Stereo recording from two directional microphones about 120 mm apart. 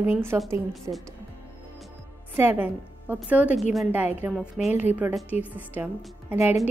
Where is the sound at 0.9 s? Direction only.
30° right (ahead or behind).